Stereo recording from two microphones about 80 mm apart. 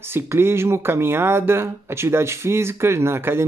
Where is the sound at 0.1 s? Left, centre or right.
Right.